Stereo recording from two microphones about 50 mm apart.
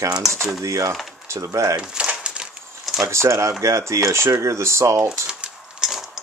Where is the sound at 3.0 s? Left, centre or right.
Right.